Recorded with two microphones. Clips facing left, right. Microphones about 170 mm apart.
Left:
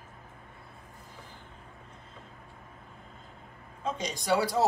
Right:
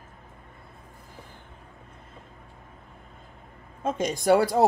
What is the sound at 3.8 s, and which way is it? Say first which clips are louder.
Speech: right 7 dB; 50° right (ahead or behind).